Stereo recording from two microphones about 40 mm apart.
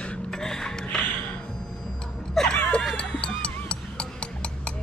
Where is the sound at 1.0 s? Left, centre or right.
Left.